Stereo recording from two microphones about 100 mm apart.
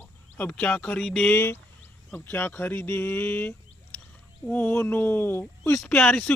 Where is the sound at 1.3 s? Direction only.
25° left (ahead or behind).